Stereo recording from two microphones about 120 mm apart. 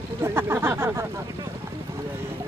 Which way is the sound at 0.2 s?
20° right (ahead or behind).